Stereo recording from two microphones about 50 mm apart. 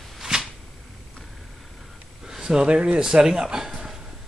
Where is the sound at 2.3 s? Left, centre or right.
Centre.